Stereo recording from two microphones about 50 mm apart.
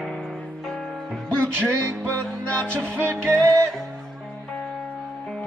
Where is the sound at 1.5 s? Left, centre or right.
Right.